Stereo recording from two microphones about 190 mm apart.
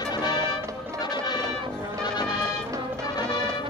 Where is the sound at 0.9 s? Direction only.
20° left (ahead or behind).